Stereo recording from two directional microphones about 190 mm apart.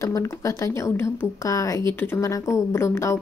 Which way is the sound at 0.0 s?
15° left (ahead or behind).